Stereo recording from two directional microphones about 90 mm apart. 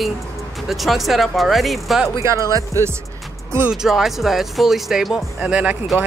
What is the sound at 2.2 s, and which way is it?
Speech, 35° right (ahead or behind).